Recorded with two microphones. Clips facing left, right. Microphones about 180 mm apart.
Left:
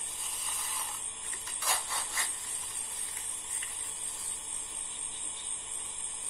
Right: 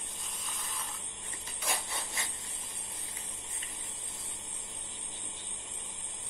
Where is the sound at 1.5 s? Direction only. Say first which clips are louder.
Even; 15° right (ahead or behind).